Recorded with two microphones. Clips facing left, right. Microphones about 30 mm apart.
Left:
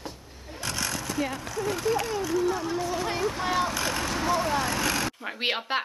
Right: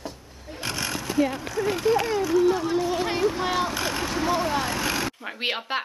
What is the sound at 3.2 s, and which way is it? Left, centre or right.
Speech, centre.